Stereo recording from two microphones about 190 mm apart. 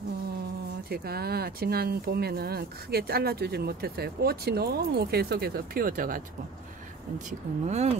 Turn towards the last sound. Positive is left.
turn(degrees=-35)  # may be behind; listen again after turning